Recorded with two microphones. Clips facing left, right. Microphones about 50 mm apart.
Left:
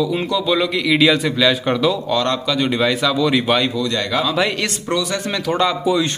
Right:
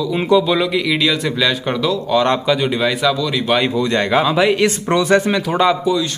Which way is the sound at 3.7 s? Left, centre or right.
Right.